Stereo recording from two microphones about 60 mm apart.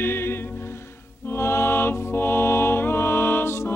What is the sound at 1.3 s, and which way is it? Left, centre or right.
Music, left.